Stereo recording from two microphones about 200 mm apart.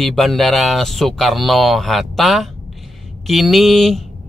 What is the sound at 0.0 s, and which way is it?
Speech, centre (ahead or behind).